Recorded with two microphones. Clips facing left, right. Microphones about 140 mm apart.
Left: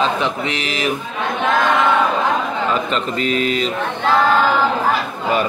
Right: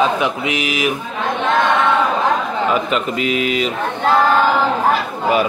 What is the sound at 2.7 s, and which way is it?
Speech, 10° right (ahead or behind).